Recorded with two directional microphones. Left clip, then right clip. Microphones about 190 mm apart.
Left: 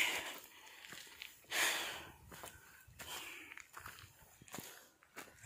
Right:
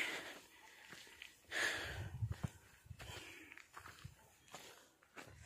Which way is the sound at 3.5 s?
50° left (ahead or behind).